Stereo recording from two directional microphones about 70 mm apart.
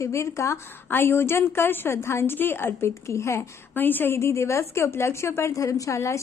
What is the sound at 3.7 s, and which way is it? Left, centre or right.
A woman's voice, left.